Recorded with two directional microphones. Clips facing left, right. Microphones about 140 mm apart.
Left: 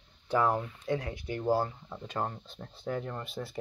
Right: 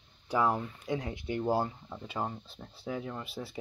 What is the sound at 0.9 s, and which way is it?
Speech, 20° right (ahead or behind).